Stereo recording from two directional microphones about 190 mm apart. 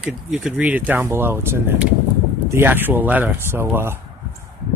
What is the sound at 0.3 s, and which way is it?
Speech, 5° right (ahead or behind).